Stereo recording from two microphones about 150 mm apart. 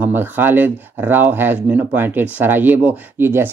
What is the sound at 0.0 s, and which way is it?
Speech, 15° right (ahead or behind).